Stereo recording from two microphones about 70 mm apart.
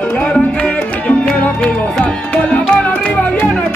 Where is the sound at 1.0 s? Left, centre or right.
Centre.